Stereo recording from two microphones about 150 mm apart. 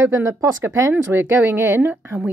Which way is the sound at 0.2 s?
20° right (ahead or behind).